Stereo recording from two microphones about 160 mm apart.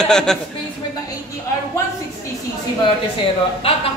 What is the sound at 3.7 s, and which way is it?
Speech, 35° left (ahead or behind).